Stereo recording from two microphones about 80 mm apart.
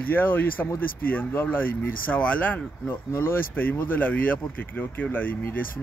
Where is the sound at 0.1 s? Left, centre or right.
Left.